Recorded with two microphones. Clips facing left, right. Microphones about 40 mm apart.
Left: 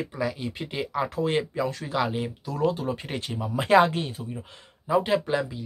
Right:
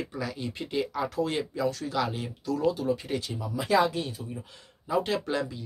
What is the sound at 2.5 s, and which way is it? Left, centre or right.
Speech, left.